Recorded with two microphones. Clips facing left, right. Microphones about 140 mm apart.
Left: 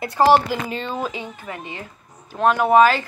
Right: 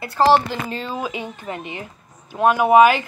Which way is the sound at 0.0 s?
10° left (ahead or behind).